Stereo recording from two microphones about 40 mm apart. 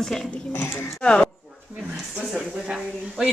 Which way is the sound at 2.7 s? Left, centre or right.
Centre.